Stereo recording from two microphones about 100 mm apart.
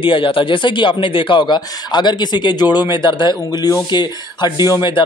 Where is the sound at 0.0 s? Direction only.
55° left (ahead or behind).